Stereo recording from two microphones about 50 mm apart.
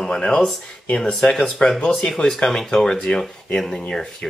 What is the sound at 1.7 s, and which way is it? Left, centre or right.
Speech, centre.